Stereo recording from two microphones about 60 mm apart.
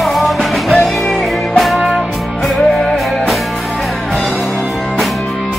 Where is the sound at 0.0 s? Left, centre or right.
Centre.